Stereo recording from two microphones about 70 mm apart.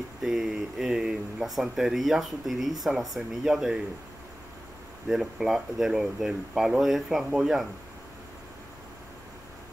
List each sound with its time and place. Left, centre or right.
0.2 s speech: centre
5.0 s speech: centre